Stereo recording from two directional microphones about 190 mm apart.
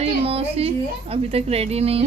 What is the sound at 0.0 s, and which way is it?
A woman's voice, 30° right (ahead or behind).